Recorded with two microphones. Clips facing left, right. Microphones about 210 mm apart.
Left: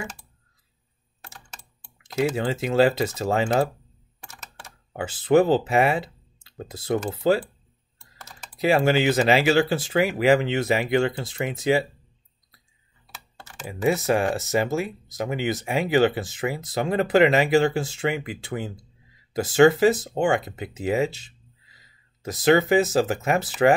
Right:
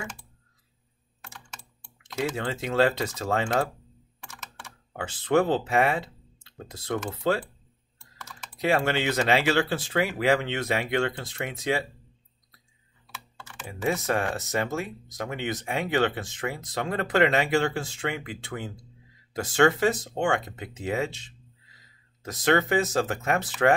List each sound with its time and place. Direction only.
1.2 s typing: 40° left (ahead or behind)
2.1 s speech: 5° left (ahead or behind)
4.9 s speech: 5° left (ahead or behind)
8.2 s typing: 35° left (ahead or behind)
8.5 s speech: 5° left (ahead or behind)
13.7 s speech: 5° left (ahead or behind)